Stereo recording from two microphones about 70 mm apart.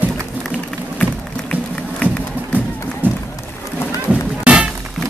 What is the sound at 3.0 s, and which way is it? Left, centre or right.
Run, right.